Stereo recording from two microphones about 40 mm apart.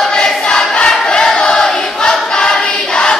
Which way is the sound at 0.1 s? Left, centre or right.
Centre.